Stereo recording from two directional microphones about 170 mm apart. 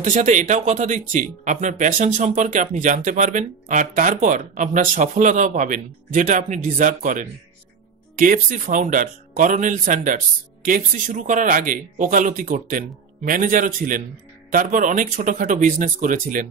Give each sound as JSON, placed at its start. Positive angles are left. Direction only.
{"t": 0.0, "sound": "speech", "side_deg": -45}